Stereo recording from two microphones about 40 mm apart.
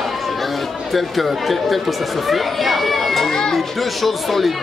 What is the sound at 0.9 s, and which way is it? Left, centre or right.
Speech, centre.